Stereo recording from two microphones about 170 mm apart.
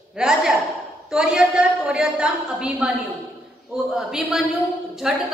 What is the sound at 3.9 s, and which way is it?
A woman's voice, 5° right (ahead or behind).